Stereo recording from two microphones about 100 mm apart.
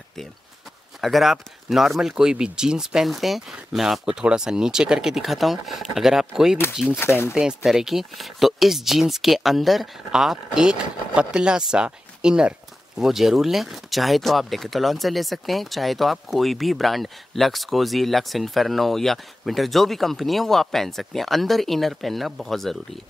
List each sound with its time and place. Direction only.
1.0 s speech: centre (ahead or behind)
7.0 s speech: 25° left (ahead or behind)
7.3 s speech: 5° right (ahead or behind)